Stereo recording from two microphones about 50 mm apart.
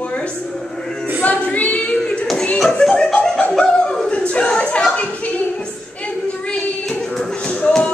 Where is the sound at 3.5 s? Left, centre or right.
Centre.